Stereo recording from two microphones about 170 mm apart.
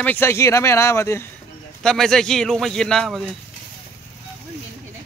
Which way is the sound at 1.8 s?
5° left (ahead or behind).